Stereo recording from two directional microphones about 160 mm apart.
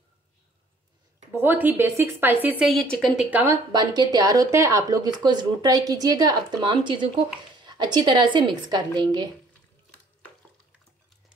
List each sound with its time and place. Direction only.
1.3 s a woman's voice: 10° right (ahead or behind)
2.4 s a woman's voice: centre (ahead or behind)
3.3 s a woman's voice: 10° right (ahead or behind)
3.7 s a woman's voice: 25° right (ahead or behind)